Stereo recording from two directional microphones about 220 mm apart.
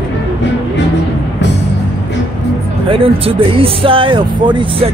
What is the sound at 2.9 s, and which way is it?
Speech, 25° right (ahead or behind).